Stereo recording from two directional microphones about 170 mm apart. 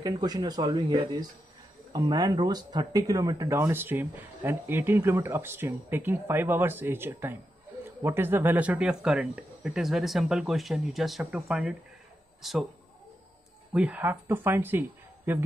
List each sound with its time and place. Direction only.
0.0 s speech: 25° right (ahead or behind); by 12.6 s centre (ahead or behind)
13.7 s speech: 10° right (ahead or behind)